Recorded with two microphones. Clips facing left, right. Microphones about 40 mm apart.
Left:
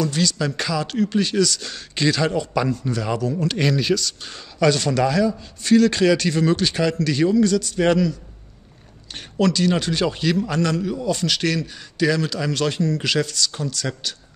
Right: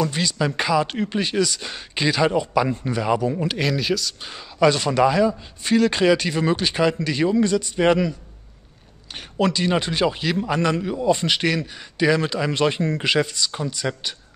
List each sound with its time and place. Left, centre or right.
0.0 s speech: centre
3.5 s speech: centre
9.4 s a man's voice: centre